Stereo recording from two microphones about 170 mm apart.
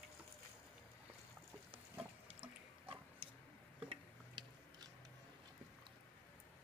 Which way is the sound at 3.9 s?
25° right (ahead or behind).